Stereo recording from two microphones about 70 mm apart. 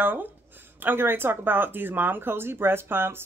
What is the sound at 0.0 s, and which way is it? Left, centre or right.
Speech, right.